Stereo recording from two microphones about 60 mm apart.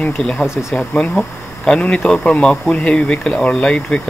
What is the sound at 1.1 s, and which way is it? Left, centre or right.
Speech, centre.